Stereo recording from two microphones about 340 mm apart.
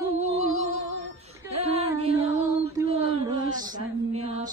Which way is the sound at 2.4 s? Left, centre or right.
Centre.